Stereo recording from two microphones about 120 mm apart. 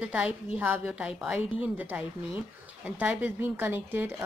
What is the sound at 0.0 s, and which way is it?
A woman's voice, 10° right (ahead or behind).